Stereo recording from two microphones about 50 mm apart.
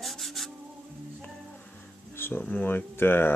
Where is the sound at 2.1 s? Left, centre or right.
Left.